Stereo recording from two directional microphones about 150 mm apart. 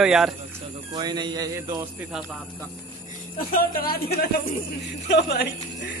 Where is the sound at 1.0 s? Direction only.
30° right (ahead or behind).